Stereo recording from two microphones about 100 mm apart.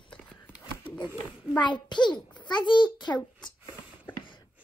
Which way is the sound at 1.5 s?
50° left (ahead or behind).